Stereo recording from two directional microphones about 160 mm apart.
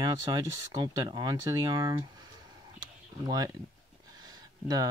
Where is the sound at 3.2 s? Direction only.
25° right (ahead or behind).